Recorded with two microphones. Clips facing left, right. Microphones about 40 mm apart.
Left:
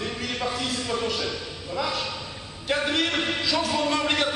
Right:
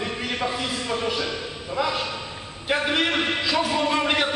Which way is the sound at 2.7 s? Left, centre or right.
Centre.